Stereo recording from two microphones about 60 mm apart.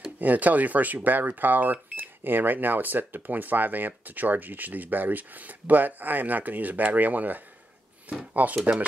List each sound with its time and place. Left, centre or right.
0.2 s speech: right